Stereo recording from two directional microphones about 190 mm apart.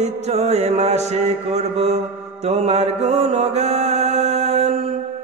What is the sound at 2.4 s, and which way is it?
Mantra, 35° right (ahead or behind).